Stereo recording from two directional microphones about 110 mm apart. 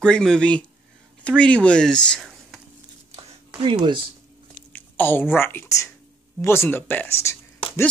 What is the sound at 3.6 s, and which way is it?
Speech, 50° right (ahead or behind).